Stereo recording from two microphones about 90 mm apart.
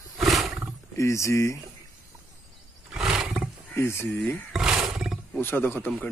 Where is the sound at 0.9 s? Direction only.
35° left (ahead or behind).